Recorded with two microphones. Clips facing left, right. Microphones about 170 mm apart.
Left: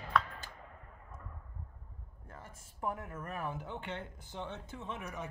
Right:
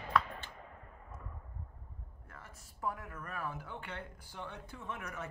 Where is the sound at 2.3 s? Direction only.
25° left (ahead or behind).